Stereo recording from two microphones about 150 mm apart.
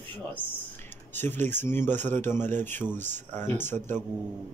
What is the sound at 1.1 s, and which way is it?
Speech, 15° left (ahead or behind).